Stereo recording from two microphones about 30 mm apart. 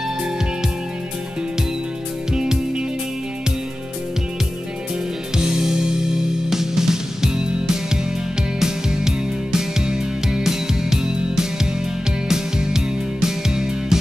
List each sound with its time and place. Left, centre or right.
2.3 s music: right
5.4 s music: centre
8.5 s music: centre
12.3 s music: centre